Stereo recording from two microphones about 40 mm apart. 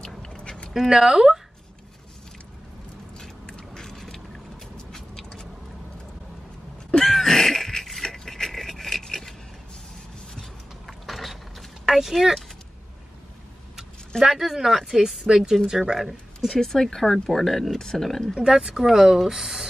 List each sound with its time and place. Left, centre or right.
0.4 s a sound: left
0.7 s speech: centre
3.2 s biting: centre
3.9 s boat: centre
4.9 s a sound: centre
7.1 s a sound: centre
10.9 s mechanisms: centre
14.2 s speech: centre
16.3 s speech: centre
18.4 s speech: centre